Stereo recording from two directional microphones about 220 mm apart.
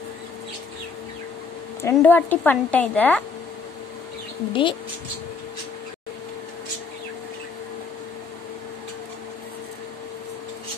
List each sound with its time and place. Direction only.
1.8 s a woman's voice: 10° left (ahead or behind)
4.5 s speech: 20° left (ahead or behind)